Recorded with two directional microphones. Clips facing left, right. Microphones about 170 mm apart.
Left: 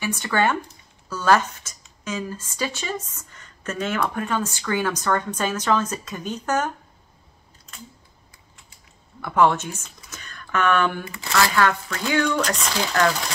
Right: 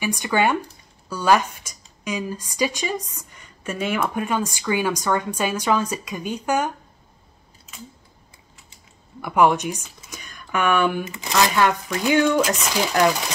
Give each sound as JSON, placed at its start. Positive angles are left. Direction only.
{"t": 0.0, "sound": "speech", "side_deg": -15}
{"t": 7.7, "sound": "typing", "side_deg": -5}
{"t": 9.2, "sound": "speech", "side_deg": -15}